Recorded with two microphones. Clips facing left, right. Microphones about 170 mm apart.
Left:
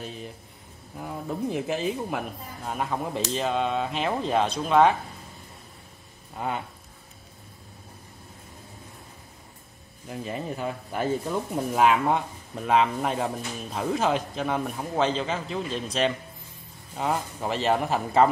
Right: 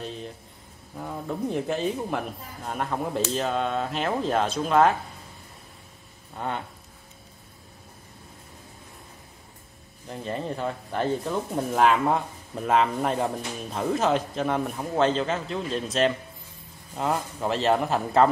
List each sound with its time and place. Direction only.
0.0 s a sound: 5° left (ahead or behind)
0.9 s speech: 5° left (ahead or behind)
6.3 s speech: 5° left (ahead or behind)
10.0 s speech: 5° left (ahead or behind)